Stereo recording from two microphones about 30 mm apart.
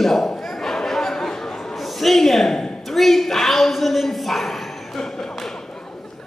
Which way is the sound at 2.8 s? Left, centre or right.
Centre.